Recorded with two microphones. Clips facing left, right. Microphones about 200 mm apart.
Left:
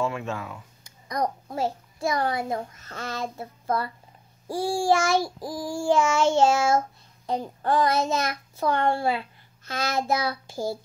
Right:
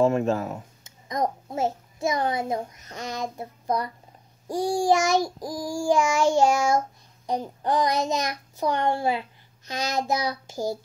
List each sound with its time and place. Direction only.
0.0 s speech: 40° right (ahead or behind)
0.8 s a child's voice: 20° right (ahead or behind)
4.5 s child singing: 15° right (ahead or behind)